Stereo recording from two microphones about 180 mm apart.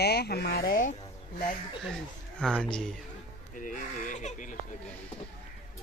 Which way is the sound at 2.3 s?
5° left (ahead or behind).